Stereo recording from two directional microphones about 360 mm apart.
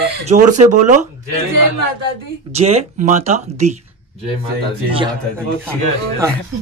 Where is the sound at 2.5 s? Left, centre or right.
Centre.